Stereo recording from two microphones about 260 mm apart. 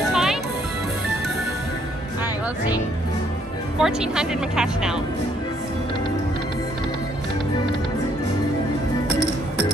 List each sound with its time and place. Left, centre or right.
0.1 s music: centre
3.8 s speech: centre
9.1 s music: left